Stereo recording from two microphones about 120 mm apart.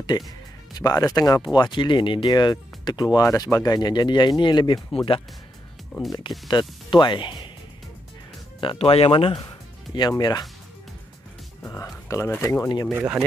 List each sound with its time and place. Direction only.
0.1 s speech: 35° left (ahead or behind)
5.9 s speech: 5° left (ahead or behind)
6.9 s speech: 40° left (ahead or behind)
8.5 s speech: 45° left (ahead or behind)
9.9 s speech: 35° left (ahead or behind)
11.6 s speech: 20° left (ahead or behind)
12.9 s speech: 15° right (ahead or behind)